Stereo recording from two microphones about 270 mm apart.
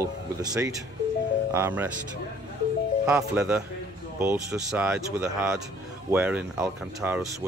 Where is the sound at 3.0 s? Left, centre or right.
Centre.